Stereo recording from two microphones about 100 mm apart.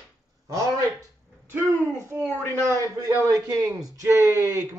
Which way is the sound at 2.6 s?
25° right (ahead or behind).